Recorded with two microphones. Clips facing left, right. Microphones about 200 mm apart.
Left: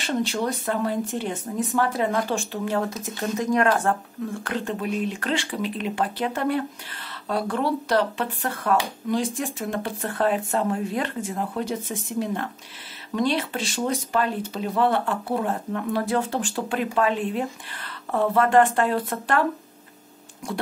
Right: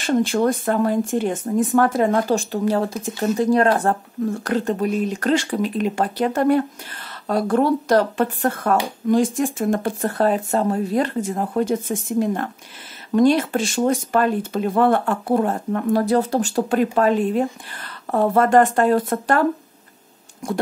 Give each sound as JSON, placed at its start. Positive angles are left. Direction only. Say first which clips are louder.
{"t": 0.0, "sound": "speech", "louder": "right 7 dB", "side_deg": -50}
{"t": 20.4, "sound": "speech", "louder": "right 6 dB", "side_deg": -45}